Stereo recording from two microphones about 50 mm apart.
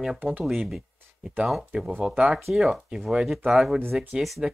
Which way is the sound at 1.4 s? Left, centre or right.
Centre.